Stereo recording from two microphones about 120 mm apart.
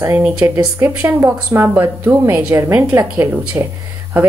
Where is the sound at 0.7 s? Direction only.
20° right (ahead or behind).